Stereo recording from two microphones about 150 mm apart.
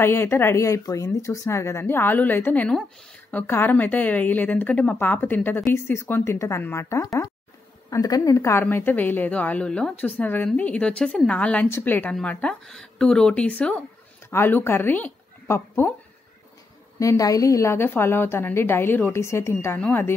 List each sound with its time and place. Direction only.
0.0 s a woman's voice: 15° left (ahead or behind)
17.0 s a woman's voice: 20° left (ahead or behind)